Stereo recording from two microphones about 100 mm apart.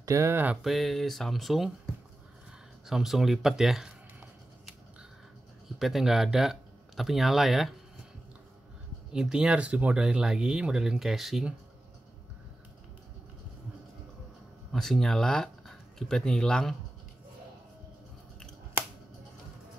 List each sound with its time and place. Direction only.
0.0 s a sound: 30° right (ahead or behind)
0.7 s speech: centre (ahead or behind)
2.9 s speech: 5° right (ahead or behind)
5.8 s speech: centre (ahead or behind)
9.1 s speech: 5° right (ahead or behind)
14.7 s speech: 5° left (ahead or behind)